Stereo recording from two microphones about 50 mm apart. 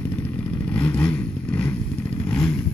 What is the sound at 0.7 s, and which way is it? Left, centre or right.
Vehicle, left.